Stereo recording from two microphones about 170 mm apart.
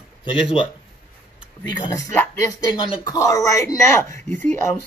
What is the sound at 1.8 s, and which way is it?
Speech, 20° left (ahead or behind).